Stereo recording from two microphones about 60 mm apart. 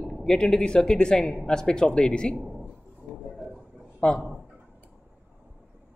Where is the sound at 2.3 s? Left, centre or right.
Centre.